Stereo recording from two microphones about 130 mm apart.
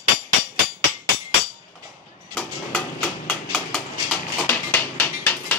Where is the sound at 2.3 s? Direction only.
10° left (ahead or behind).